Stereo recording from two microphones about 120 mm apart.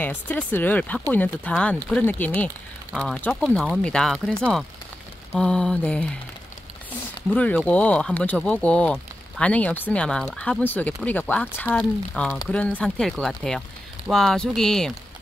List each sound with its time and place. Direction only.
0.0 s speech: 15° left (ahead or behind)
7.3 s speech: 10° left (ahead or behind)
10.6 s speech: 15° left (ahead or behind)